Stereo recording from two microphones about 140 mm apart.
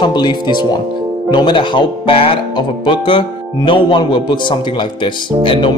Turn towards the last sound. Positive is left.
turn(degrees=35)  # may be behind; listen again after turning